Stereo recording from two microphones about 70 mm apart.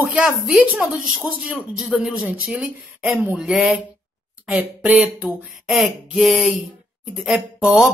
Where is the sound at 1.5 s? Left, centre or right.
Centre.